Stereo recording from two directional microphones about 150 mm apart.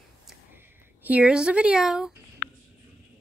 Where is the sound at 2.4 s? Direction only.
60° left (ahead or behind).